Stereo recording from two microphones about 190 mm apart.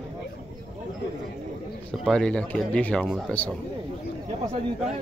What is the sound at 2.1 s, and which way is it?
Speech, 5° left (ahead or behind).